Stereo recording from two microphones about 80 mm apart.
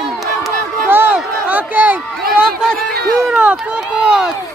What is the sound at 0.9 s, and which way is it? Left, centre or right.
Crowd, right.